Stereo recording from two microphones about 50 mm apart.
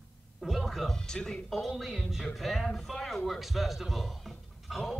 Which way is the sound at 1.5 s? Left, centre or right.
Centre.